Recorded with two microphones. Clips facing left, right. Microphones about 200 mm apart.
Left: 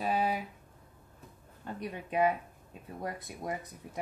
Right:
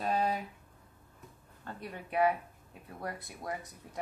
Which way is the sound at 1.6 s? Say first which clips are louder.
Left 4 dB; 15° left (ahead or behind).